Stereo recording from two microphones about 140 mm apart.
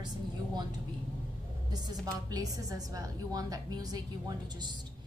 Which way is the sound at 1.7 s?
30° right (ahead or behind).